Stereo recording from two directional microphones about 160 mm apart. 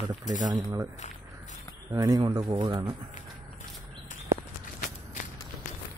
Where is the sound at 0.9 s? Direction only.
45° left (ahead or behind).